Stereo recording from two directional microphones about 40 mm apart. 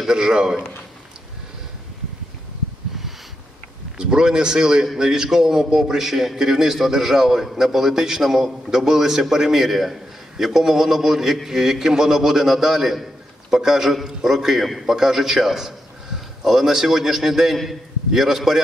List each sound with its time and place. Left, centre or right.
0.1 s a man's voice: centre
4.0 s a man's voice: centre